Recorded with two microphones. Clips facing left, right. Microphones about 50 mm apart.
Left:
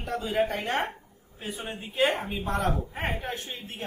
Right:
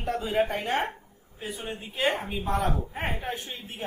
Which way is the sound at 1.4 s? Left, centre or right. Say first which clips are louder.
Even; centre.